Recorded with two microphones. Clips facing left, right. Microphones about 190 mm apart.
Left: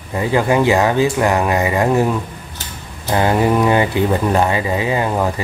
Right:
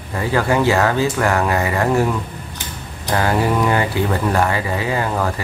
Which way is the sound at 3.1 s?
20° left (ahead or behind).